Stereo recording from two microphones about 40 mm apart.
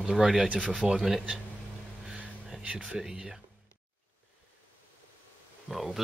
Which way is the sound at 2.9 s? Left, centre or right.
Centre.